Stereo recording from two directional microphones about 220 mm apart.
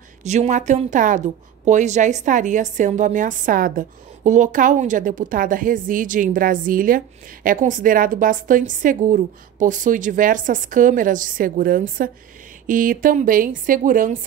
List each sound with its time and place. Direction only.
0.2 s a woman's voice: 30° right (ahead or behind)